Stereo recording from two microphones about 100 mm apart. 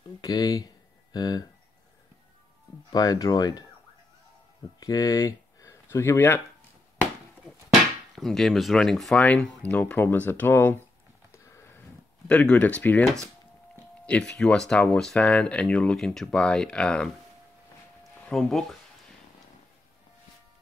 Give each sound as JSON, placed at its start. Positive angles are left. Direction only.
{"t": 0.2, "sound": "speech", "side_deg": 40}
{"t": 2.9, "sound": "speech", "side_deg": 40}
{"t": 4.7, "sound": "speech", "side_deg": 35}
{"t": 8.2, "sound": "speech", "side_deg": 5}
{"t": 9.1, "sound": "speech", "side_deg": 15}
{"t": 11.3, "sound": "sniff", "side_deg": 30}
{"t": 12.3, "sound": "speech", "side_deg": 15}
{"t": 13.0, "sound": "speech", "side_deg": 5}
{"t": 18.3, "sound": "speech", "side_deg": 0}